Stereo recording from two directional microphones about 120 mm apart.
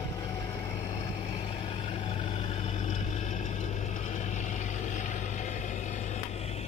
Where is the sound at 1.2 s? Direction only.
55° left (ahead or behind).